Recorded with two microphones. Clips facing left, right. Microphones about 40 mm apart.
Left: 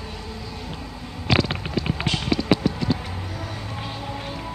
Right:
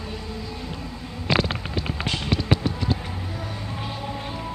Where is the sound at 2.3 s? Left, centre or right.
Right.